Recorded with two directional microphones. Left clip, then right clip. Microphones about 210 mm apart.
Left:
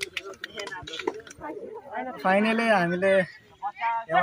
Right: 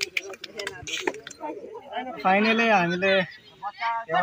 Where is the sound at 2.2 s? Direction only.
25° left (ahead or behind).